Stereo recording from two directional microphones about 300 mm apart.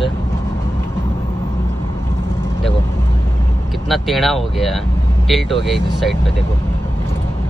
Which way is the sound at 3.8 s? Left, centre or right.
Centre.